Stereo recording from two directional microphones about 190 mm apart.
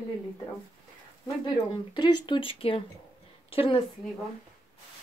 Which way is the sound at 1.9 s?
25° left (ahead or behind).